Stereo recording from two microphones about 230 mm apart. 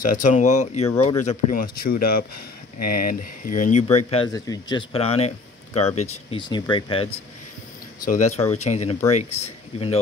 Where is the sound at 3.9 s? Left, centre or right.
Left.